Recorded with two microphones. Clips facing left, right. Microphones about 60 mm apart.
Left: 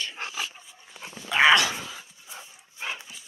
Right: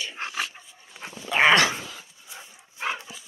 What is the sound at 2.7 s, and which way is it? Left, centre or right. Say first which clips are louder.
Dog: right 5 dB; right.